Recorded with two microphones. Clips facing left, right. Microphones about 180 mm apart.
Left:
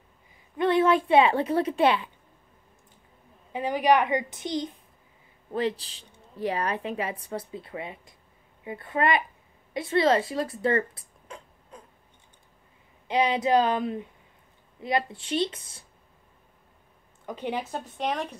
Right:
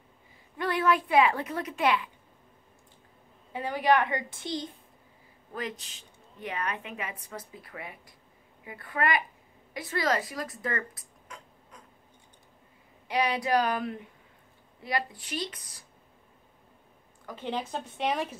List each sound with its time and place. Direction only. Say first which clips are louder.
0.6 s a woman's voice: left 5 dB; 25° left (ahead or behind)
3.5 s a woman's voice: left 3 dB; 15° left (ahead or behind)
5.5 s a woman's voice: left 9 dB; 30° left (ahead or behind)
13.1 s a woman's voice: left 4 dB; 20° left (ahead or behind)
17.3 s speech: left 2 dB; 15° left (ahead or behind); by 18.4 s 5° right (ahead or behind)